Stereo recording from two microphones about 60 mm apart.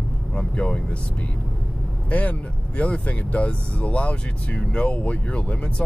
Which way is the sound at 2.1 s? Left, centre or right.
Left.